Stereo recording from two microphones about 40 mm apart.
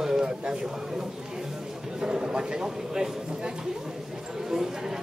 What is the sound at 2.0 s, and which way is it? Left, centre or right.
Speech, right.